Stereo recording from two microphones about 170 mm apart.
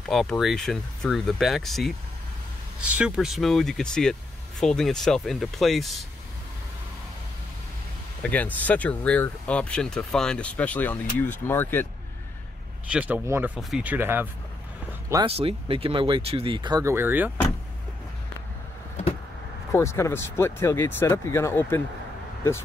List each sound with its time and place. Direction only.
0.0 s speech: centre (ahead or behind)
8.2 s speech: 10° left (ahead or behind)
12.9 s speech: 10° right (ahead or behind)
15.2 s speech: 35° right (ahead or behind); by 17.3 s 10° right (ahead or behind)
19.7 s speech: 15° left (ahead or behind)